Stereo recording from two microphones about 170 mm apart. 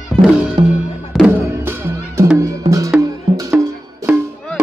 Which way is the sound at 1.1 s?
Centre (ahead or behind).